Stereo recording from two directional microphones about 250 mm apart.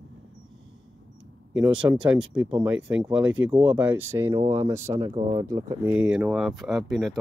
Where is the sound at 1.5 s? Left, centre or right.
Centre.